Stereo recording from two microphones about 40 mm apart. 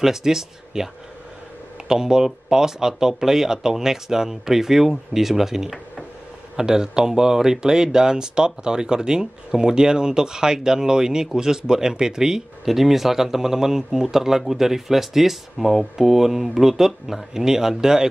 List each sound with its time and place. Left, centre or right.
0.0 s speech: centre
1.9 s speech: centre